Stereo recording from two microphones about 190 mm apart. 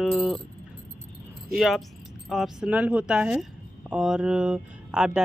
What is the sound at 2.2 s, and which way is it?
Speech, centre (ahead or behind).